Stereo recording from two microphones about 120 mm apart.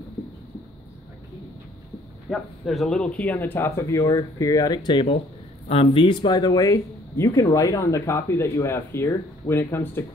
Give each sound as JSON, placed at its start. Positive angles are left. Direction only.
{"t": 2.2, "sound": "speech", "side_deg": 0}